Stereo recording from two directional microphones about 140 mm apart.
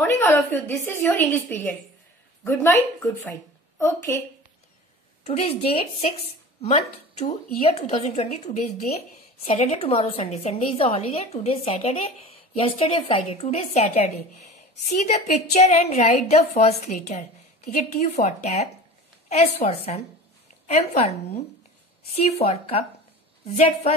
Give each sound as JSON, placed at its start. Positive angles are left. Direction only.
{"t": 0.0, "sound": "speech", "side_deg": 15}
{"t": 5.2, "sound": "a woman's voice", "side_deg": 50}